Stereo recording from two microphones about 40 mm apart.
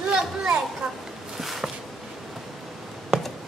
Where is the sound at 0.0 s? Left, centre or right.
Centre.